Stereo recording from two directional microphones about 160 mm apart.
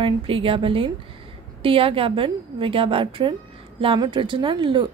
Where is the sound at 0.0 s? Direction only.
35° right (ahead or behind).